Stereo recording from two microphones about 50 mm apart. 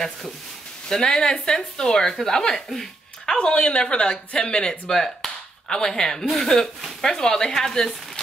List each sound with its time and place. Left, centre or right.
0.8 s speech: centre
3.3 s speech: centre